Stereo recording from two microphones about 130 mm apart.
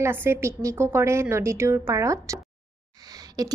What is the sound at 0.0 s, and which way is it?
A woman's voice, 15° right (ahead or behind).